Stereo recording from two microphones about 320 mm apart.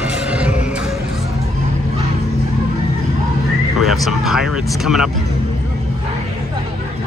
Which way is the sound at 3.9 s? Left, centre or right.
Centre.